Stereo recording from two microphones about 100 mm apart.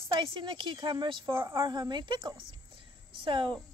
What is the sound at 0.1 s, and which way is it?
Speech, 55° right (ahead or behind).